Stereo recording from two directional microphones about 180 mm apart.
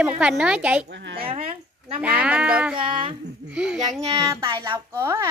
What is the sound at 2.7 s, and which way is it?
Speech, 30° right (ahead or behind).